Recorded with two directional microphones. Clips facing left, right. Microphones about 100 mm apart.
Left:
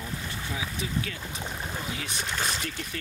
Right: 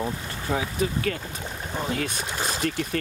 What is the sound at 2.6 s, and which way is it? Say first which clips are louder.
Speech: right 10 dB; 50° right (ahead or behind).